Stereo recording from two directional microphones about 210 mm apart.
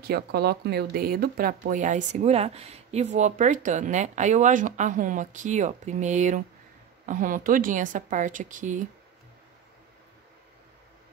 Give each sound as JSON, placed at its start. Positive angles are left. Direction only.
{"t": 0.0, "sound": "speech", "side_deg": -50}